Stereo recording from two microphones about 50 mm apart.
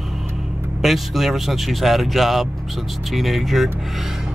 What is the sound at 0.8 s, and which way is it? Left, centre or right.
Speech, centre.